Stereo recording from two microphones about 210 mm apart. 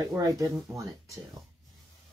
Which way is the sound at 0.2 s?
15° right (ahead or behind).